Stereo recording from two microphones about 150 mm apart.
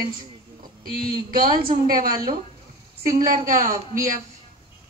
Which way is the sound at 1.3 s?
70° right (ahead or behind).